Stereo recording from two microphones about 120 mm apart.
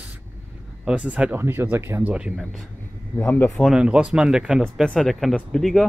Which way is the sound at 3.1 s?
15° left (ahead or behind).